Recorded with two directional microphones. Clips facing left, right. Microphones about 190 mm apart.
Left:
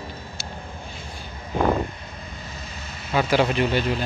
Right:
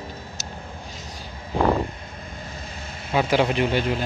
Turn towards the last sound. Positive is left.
turn(degrees=-15)  # may be behind; listen again after turning